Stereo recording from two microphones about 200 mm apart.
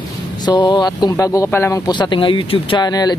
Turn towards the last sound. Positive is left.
turn(degrees=20)  # may be behind; listen again after turning